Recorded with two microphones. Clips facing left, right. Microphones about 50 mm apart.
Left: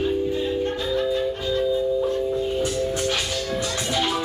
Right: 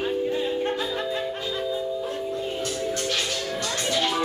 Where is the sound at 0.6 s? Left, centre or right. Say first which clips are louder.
Left 3 dB; centre.